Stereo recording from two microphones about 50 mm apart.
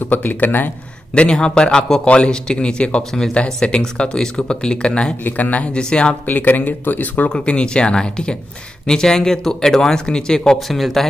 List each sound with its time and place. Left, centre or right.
0.1 s speech: left
1.1 s a man's voice: centre
3.0 s a man's voice: centre
5.2 s a man's voice: left
6.2 s speech: left
7.2 s a man's voice: left
10.7 s speech: centre